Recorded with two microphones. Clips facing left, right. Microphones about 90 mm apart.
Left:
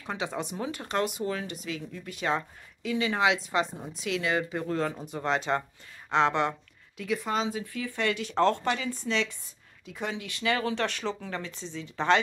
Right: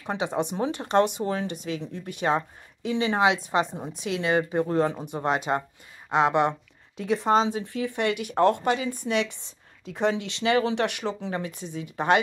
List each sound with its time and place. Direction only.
0.0 s speech: 20° right (ahead or behind)
7.0 s speech: 30° right (ahead or behind); by 9.4 s 15° right (ahead or behind)
9.9 s speech: 30° right (ahead or behind); by 12.2 s 15° right (ahead or behind)